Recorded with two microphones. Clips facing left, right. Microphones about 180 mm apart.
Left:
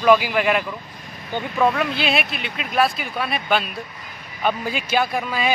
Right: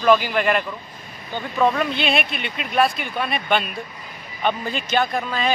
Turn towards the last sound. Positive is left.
turn(degrees=10)  # may be behind; listen again after turning